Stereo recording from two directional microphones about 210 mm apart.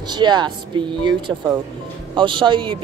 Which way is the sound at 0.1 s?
20° right (ahead or behind).